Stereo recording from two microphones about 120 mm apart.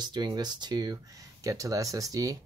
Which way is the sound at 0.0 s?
35° right (ahead or behind).